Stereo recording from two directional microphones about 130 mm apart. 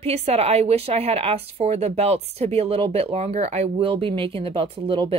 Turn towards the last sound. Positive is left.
turn(degrees=-40)  # may be behind; listen again after turning